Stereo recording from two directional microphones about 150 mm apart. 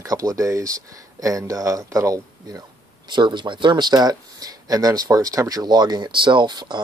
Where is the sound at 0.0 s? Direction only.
25° right (ahead or behind).